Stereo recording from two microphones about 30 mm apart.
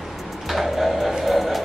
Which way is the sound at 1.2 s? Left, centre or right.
Centre.